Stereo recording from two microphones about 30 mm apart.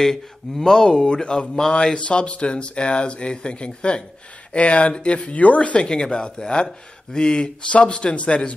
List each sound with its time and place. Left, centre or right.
0.0 s speech: centre; by 1.5 s left
2.0 s speech: left
5.8 s speech: left